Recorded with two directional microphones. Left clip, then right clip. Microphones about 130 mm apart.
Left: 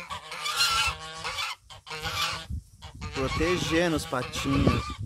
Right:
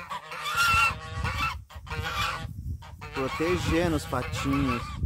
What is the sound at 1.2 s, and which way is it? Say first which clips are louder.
Goose: right 3 dB; 20° left (ahead or behind).